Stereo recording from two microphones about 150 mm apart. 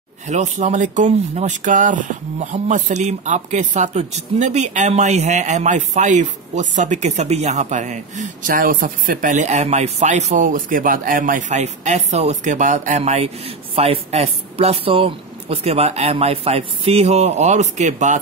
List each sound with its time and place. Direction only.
0.3 s speech: 50° right (ahead or behind)